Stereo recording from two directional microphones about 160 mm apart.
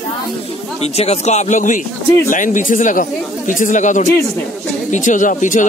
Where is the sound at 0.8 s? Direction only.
40° left (ahead or behind).